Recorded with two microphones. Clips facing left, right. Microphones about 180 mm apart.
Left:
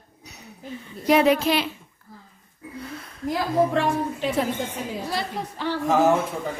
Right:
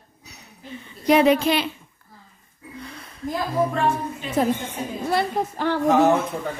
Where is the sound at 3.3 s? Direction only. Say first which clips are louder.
Left 2 dB; 90° left.